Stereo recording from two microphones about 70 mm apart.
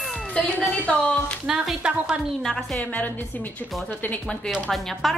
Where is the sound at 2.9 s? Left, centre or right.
Left.